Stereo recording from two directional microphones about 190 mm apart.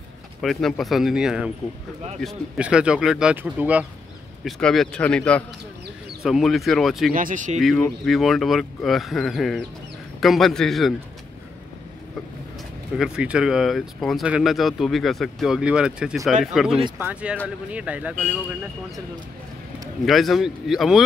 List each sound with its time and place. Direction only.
0.4 s speech: centre (ahead or behind)
7.2 s speech: 45° right (ahead or behind)
8.0 s speech: centre (ahead or behind)
12.9 s speech: 5° right (ahead or behind)
20.1 s speech: centre (ahead or behind)